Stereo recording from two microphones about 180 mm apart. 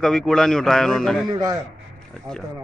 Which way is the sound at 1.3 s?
20° right (ahead or behind).